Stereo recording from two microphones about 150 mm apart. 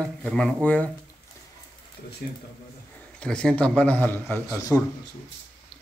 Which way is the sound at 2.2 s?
80° left.